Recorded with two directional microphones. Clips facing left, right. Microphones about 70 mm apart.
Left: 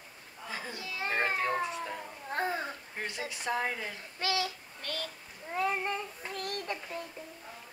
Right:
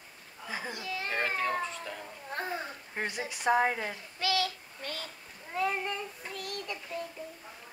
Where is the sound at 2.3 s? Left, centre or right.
Left.